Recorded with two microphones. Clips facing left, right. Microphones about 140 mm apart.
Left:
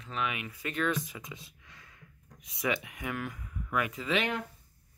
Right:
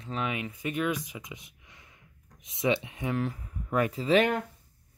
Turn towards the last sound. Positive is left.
turn(degrees=-40)  # may be behind; listen again after turning